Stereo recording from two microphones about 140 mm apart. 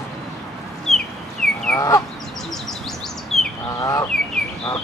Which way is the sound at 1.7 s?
20° left (ahead or behind).